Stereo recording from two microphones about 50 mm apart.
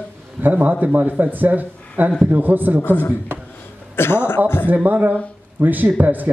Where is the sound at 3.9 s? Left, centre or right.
Left.